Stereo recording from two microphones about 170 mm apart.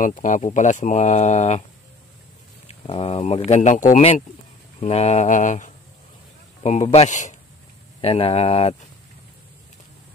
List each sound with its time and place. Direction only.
0.0 s speech: 50° left (ahead or behind)
2.7 s speech: 35° left (ahead or behind)
8.0 s speech: 35° left (ahead or behind)